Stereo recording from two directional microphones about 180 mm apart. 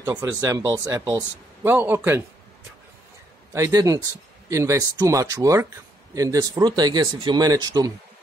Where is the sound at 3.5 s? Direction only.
20° right (ahead or behind).